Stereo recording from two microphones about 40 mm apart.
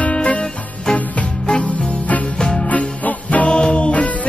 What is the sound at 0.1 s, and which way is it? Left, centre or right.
Music, left.